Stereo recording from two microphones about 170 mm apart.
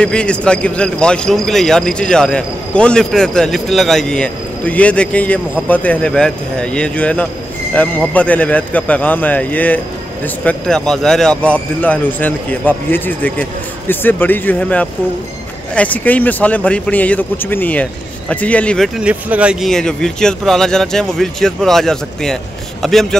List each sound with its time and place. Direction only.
0.0 s a man's voice: 5° left (ahead or behind)
18.9 s speech: 10° right (ahead or behind)
19.7 s a man's voice: 5° left (ahead or behind)